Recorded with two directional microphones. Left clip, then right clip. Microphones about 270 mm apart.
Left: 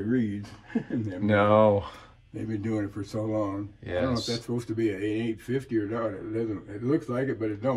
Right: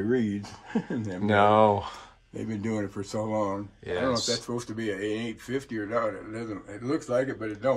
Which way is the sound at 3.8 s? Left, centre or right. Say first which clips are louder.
Right 2 dB; centre.